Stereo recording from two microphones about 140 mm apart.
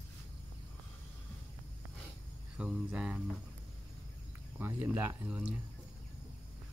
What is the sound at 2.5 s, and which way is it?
Speech, 5° right (ahead or behind).